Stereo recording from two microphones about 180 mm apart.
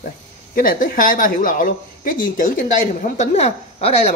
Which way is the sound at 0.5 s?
50° left (ahead or behind).